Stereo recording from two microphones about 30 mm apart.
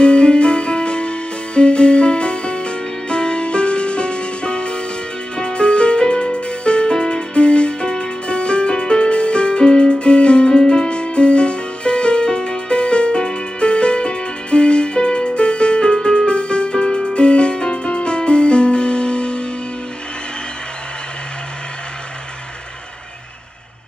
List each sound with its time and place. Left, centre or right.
0.0 s music: left
7.3 s music: left
16.3 s music: left